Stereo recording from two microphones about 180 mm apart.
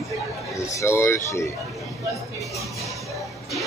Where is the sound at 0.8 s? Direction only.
15° left (ahead or behind).